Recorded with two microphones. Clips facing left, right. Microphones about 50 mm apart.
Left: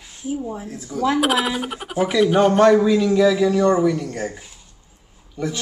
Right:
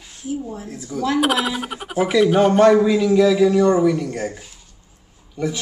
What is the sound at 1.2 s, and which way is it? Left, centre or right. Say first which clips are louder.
Speech: even; centre.